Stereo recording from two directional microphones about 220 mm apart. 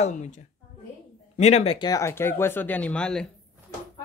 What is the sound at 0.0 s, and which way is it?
A woman's voice, 35° left (ahead or behind).